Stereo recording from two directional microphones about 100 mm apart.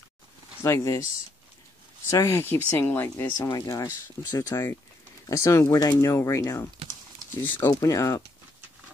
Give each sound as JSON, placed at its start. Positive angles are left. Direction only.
{"t": 0.7, "sound": "speech", "side_deg": 35}
{"t": 2.0, "sound": "speech", "side_deg": 30}
{"t": 3.3, "sound": "speech", "side_deg": 40}
{"t": 7.4, "sound": "speech", "side_deg": 20}
{"t": 7.8, "sound": "speech", "side_deg": 30}